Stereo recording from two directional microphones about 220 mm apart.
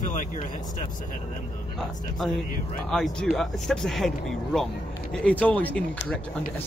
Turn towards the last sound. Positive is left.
turn(degrees=5)  # may be behind; listen again after turning